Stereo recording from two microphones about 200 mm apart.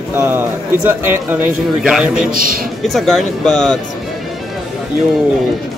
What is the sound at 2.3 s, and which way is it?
Speech, 45° right (ahead or behind).